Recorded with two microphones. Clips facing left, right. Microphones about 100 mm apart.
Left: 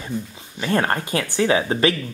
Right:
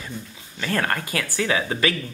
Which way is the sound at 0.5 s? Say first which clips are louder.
Left 4 dB; 25° left (ahead or behind).